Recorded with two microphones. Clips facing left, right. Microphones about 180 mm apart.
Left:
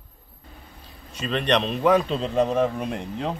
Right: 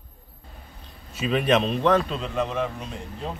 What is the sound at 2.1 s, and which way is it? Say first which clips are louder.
Speech: left 5 dB; 35° left (ahead or behind).